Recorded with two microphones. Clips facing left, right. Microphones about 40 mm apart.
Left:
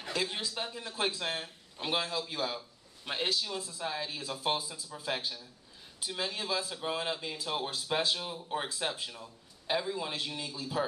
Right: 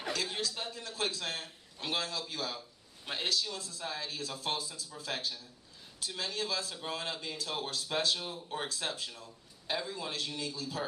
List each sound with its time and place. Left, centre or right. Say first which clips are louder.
0.1 s speech: left 3 dB; centre